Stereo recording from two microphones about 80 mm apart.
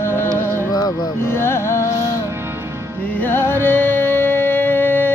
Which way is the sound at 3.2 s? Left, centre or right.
Left.